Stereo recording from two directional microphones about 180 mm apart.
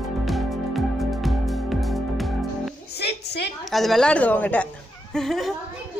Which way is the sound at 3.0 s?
65° left (ahead or behind).